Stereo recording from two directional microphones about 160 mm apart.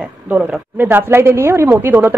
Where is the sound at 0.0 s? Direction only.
5° right (ahead or behind).